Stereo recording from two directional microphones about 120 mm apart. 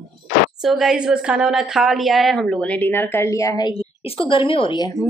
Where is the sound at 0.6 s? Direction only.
Centre (ahead or behind); by 3.7 s 30° left (ahead or behind).